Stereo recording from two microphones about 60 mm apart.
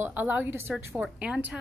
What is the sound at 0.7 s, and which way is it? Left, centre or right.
Speech, centre.